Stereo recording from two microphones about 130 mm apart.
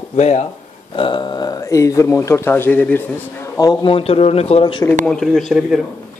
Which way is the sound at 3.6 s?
35° left (ahead or behind).